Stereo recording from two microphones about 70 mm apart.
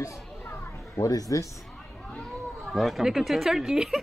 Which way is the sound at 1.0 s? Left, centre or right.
Left.